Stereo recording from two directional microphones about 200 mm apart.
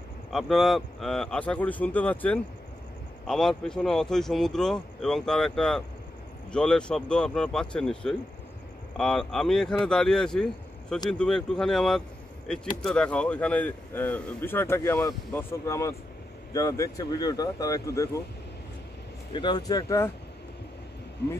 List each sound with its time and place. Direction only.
0.3 s speech: centre (ahead or behind); by 18.2 s 15° left (ahead or behind)
19.3 s speech: 20° left (ahead or behind)